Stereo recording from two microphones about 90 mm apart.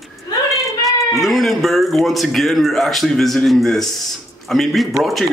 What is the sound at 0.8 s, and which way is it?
Speech, centre (ahead or behind).